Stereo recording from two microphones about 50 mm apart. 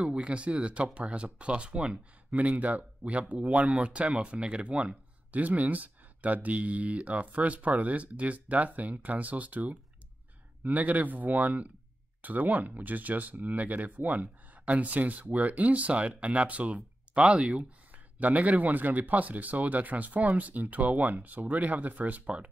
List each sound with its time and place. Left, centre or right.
0.1 s speech: right